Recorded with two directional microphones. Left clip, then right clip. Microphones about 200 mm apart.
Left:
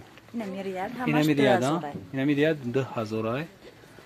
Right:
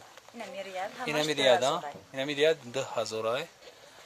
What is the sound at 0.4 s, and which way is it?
Speech, 50° left (ahead or behind).